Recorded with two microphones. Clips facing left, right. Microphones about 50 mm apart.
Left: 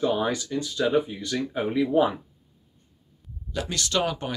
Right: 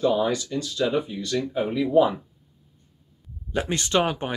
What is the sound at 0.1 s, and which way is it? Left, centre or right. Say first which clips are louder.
Speech: right 2 dB; left.